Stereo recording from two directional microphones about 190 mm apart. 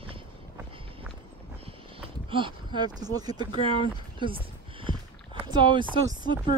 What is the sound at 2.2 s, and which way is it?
Speech, 25° right (ahead or behind).